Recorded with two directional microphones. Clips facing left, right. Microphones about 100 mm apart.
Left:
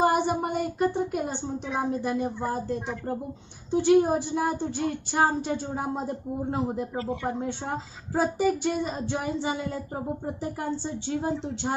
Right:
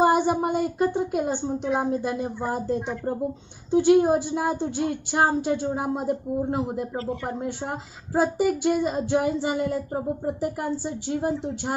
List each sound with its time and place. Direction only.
0.0 s speech: 25° right (ahead or behind)
3.7 s speech: 20° right (ahead or behind)
11.1 s speech: 15° right (ahead or behind)